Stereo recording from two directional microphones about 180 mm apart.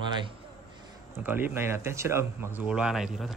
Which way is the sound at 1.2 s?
10° right (ahead or behind).